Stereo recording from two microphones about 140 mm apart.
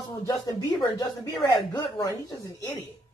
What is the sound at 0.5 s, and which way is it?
Speech, 30° left (ahead or behind).